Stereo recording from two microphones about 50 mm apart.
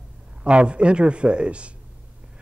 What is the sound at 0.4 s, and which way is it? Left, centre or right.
Speech, right.